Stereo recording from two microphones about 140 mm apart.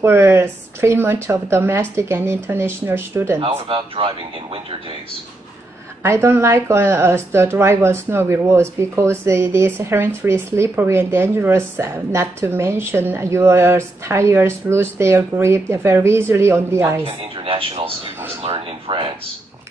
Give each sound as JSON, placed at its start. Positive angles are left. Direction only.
{"t": 0.0, "sound": "speech", "side_deg": -20}
{"t": 3.3, "sound": "speech", "side_deg": -40}
{"t": 6.0, "sound": "speech", "side_deg": -20}
{"t": 17.0, "sound": "speech", "side_deg": -40}